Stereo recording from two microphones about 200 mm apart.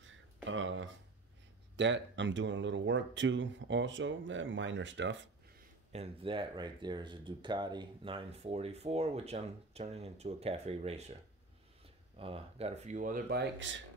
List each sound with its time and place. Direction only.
0.0 s a sound: 70° right (ahead or behind)
1.8 s speech: 65° right (ahead or behind)
5.9 s speech: 30° right (ahead or behind)
12.2 s speech: 30° right (ahead or behind); by 13.7 s 60° right (ahead or behind)